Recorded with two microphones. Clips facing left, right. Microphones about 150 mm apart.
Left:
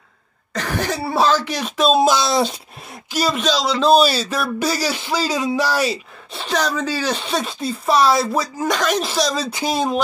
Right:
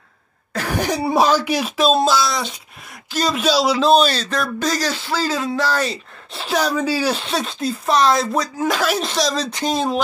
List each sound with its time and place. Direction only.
0.5 s speech: 10° right (ahead or behind)
1.8 s speech: centre (ahead or behind)
2.0 s speech: 25° left (ahead or behind)
3.1 s speech: 10° left (ahead or behind)
3.3 s speech: 10° right (ahead or behind)
3.9 s speech: 5° left (ahead or behind)
6.3 s speech: 5° right (ahead or behind)